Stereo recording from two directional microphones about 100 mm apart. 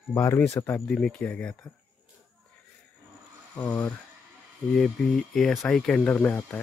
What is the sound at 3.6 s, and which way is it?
Speech, 15° left (ahead or behind).